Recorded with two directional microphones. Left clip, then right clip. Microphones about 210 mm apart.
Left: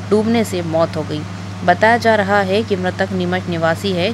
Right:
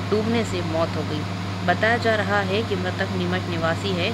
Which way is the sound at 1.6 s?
40° left (ahead or behind).